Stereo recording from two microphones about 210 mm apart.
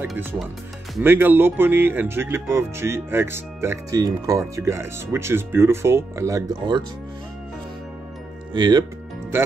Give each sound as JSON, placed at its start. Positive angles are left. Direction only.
{"t": 0.0, "sound": "speech", "side_deg": -10}
{"t": 8.5, "sound": "speech", "side_deg": -20}